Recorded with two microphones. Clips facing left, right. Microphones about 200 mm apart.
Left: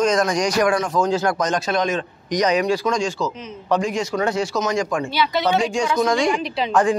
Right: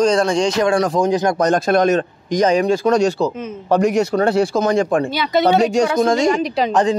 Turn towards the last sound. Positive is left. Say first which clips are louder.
# right 2 dB
turn(degrees=-20)  # may be behind; listen again after turning